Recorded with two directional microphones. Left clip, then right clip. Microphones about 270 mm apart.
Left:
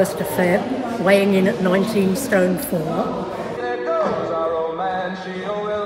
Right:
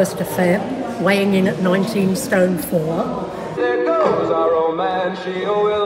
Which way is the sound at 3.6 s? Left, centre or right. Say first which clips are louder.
Right 5 dB; right.